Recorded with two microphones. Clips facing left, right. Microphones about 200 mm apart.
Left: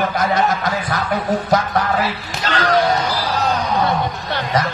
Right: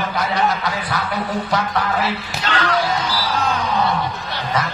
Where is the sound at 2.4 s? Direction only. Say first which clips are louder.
Left 4 dB; 40° left (ahead or behind).